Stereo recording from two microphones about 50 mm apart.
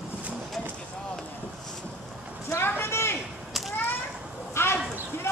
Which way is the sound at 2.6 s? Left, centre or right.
Left.